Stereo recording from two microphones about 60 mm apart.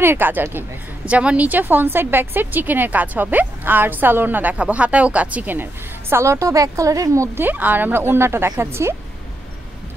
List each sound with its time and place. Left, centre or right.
0.0 s a woman's voice: right
1.0 s a woman's voice: right
7.3 s a woman's voice: right